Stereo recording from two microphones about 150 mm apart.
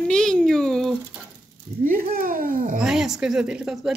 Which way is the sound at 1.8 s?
75° right (ahead or behind).